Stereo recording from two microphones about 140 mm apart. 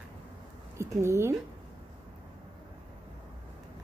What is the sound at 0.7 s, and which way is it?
Speech, 20° right (ahead or behind).